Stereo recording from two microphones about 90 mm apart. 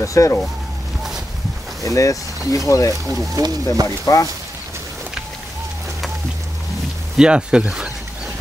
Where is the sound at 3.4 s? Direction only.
45° right (ahead or behind).